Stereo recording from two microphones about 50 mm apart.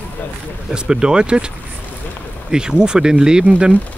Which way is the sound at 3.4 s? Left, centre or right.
Right.